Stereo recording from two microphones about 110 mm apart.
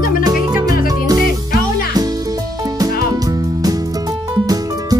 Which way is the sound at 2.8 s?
35° right (ahead or behind).